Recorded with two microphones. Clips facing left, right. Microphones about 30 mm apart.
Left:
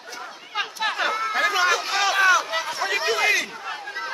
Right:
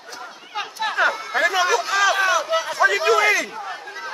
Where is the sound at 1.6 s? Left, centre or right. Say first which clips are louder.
Right 2 dB; left.